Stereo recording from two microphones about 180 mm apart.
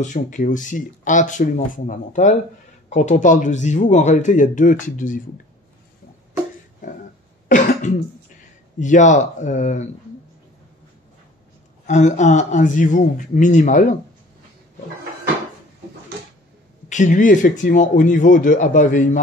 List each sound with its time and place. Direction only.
0.0 s speech: 45° left (ahead or behind)
7.4 s cough: 45° left (ahead or behind)
8.7 s speech: 45° left (ahead or behind)
11.8 s speech: 40° left (ahead or behind)
16.9 s speech: 45° left (ahead or behind)